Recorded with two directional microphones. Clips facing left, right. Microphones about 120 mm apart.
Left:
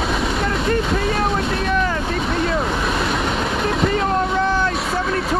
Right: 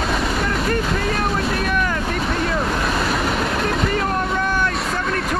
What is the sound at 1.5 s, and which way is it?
Boat, 30° left (ahead or behind).